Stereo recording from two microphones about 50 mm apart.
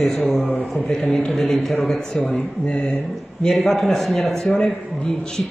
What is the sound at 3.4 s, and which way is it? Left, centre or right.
A man's voice, centre.